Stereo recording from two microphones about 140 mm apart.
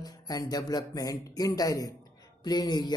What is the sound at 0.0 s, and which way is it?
Speech, 25° left (ahead or behind).